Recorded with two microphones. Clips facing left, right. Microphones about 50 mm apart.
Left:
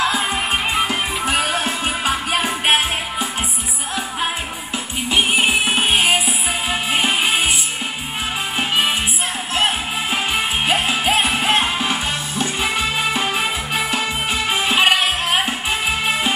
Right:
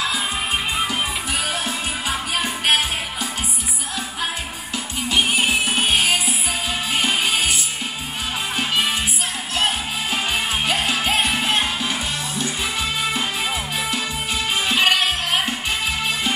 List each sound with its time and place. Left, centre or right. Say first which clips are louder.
0.8 s music: left 3 dB; left
2.4 s music: left 1 dB; left
5.1 s music: left 3 dB; left
8.5 s music: left 3 dB; left
10.1 s music: left 2 dB; left
10.9 s music: left 2 dB; centre
11.3 s music: left 3 dB; left
14.5 s music: left 2 dB; left
14.9 s music: left 2 dB; centre